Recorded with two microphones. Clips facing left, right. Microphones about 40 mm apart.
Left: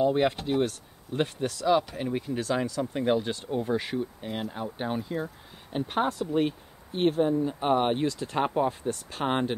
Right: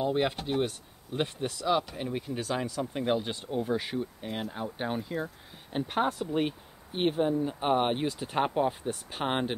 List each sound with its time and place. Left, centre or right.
0.0 s speech: centre
1.4 s speech: centre
8.1 s speech: right